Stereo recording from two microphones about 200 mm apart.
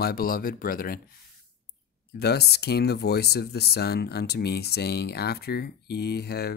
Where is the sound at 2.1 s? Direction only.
55° left (ahead or behind).